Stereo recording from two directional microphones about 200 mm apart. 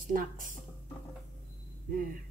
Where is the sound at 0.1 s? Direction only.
40° right (ahead or behind).